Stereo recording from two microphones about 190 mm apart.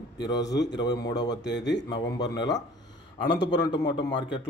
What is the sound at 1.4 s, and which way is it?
Speech, 70° left (ahead or behind).